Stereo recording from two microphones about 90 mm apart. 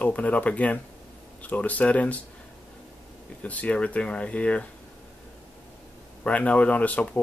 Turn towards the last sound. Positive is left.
turn(degrees=15)  # may be behind; listen again after turning